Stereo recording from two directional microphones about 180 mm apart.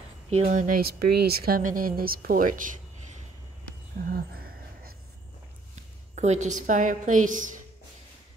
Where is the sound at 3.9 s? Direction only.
55° right (ahead or behind).